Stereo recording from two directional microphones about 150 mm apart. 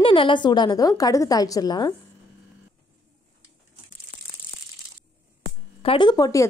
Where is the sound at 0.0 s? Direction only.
35° left (ahead or behind).